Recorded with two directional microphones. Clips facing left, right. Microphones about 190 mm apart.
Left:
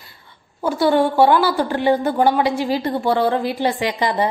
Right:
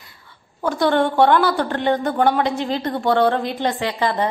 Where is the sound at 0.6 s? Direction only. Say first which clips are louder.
Left 2 dB; 5° left (ahead or behind).